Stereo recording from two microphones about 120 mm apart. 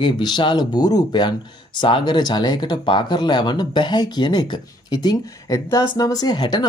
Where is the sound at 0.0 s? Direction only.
40° left (ahead or behind).